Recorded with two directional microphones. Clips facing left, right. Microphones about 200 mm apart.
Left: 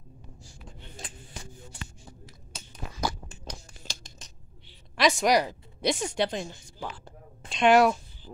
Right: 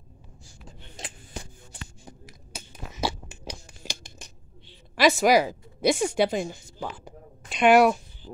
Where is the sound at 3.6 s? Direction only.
15° right (ahead or behind).